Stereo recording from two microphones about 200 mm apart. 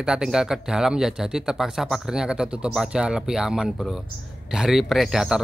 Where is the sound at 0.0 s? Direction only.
5° right (ahead or behind).